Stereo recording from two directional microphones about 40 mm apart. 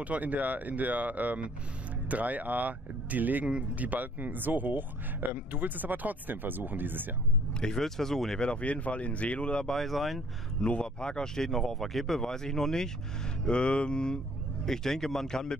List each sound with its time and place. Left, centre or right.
0.0 s speech: right
7.6 s speech: centre
8.4 s speech: left
9.8 s speech: centre
10.7 s speech: left; by 12.2 s centre
12.2 s speech: centre
13.5 s speech: left
14.7 s speech: centre